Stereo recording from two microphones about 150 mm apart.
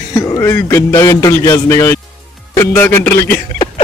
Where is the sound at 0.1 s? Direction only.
20° left (ahead or behind).